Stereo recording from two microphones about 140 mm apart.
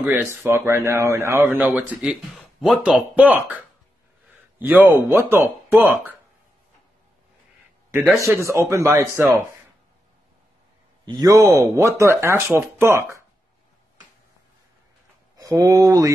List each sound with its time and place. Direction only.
0.0 s speech: 10° right (ahead or behind)
4.6 s speech: 10° right (ahead or behind)
8.2 s speech: 20° right (ahead or behind)
11.1 s speech: 25° right (ahead or behind)
15.3 s speech: 25° right (ahead or behind)